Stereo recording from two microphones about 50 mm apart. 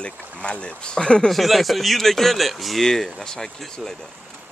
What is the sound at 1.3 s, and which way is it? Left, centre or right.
Speech, centre.